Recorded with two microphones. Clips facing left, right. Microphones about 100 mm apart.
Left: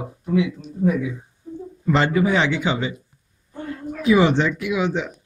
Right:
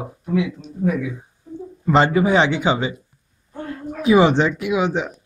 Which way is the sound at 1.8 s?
25° right (ahead or behind).